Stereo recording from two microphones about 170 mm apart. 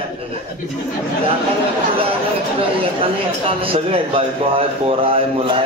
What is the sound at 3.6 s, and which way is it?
A man's voice, 35° right (ahead or behind).